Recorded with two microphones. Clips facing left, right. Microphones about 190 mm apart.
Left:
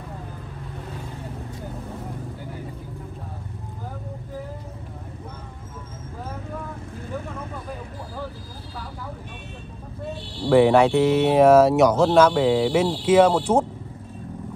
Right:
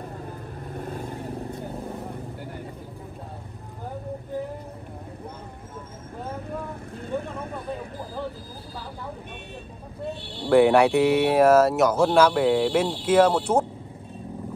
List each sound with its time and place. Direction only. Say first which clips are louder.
0.7 s vehicle: right 5 dB; 50° right (ahead or behind)
10.5 s speech: left 1 dB; centre (ahead or behind)